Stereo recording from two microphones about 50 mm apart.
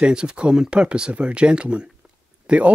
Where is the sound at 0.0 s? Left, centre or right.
Centre.